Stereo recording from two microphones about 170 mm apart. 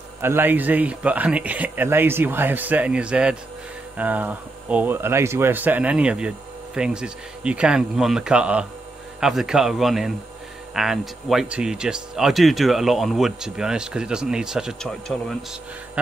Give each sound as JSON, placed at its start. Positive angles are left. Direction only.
{"t": 0.2, "sound": "speech", "side_deg": -15}